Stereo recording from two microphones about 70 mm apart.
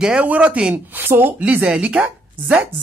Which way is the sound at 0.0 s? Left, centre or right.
Centre.